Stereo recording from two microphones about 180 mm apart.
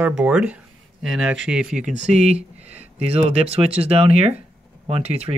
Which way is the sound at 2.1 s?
35° right (ahead or behind).